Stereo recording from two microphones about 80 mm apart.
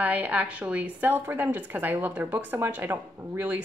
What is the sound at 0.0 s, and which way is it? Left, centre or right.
Speech, centre.